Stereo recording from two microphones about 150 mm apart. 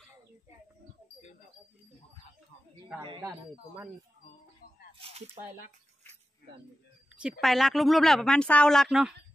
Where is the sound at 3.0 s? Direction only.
35° right (ahead or behind).